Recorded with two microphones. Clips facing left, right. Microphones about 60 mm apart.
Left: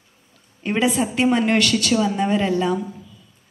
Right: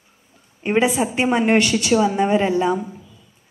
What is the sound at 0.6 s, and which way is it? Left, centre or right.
A woman's voice, right.